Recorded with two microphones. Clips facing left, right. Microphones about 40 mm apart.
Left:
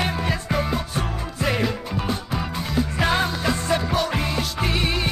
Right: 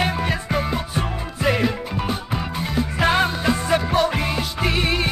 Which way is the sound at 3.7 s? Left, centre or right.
Right.